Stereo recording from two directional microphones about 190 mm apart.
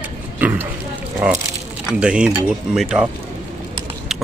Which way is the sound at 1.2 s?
5° right (ahead or behind).